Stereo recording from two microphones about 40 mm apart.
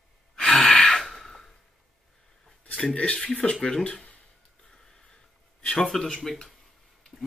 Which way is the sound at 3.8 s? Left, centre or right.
Left.